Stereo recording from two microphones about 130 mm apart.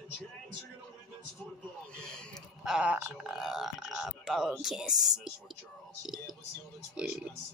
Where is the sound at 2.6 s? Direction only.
5° right (ahead or behind).